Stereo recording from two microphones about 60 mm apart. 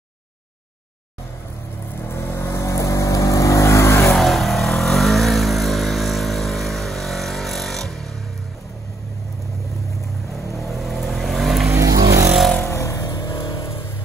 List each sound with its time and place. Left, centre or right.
2.0 s vehicle: left
4.1 s vehicle: centre
10.3 s vehicle: centre
11.7 s vehicle: right
12.6 s vehicle: left